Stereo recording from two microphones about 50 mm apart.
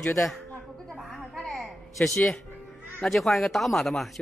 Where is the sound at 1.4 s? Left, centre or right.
Centre.